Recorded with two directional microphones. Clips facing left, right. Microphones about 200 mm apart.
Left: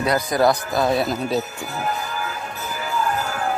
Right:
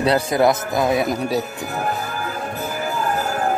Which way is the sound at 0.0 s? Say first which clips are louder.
Right 2 dB; 25° right (ahead or behind).